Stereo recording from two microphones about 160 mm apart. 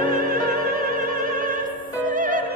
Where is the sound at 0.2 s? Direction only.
60° right (ahead or behind).